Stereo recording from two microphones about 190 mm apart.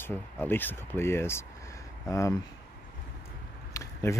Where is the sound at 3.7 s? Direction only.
15° left (ahead or behind).